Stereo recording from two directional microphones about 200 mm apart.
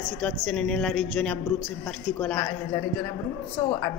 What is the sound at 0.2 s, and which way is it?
A woman's voice, 5° left (ahead or behind).